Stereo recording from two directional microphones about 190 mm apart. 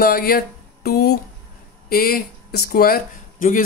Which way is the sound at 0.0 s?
50° left (ahead or behind).